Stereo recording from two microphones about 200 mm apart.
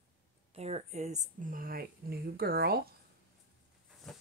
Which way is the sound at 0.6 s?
30° right (ahead or behind).